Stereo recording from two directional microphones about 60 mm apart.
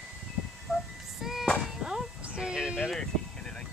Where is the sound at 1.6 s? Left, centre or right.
Centre.